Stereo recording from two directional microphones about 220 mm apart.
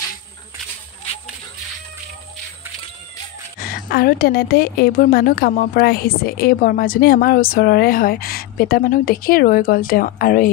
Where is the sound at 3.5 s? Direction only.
40° left (ahead or behind).